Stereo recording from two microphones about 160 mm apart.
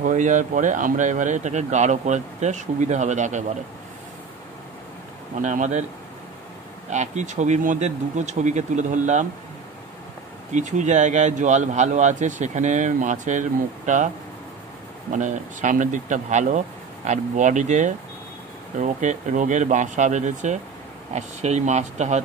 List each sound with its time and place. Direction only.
0.0 s a man's voice: 50° right (ahead or behind)
5.4 s a man's voice: 50° right (ahead or behind)
6.9 s a man's voice: 50° right (ahead or behind)
10.5 s a man's voice: 50° right (ahead or behind)